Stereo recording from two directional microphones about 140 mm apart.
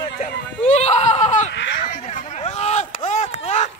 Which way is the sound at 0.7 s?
50° left (ahead or behind).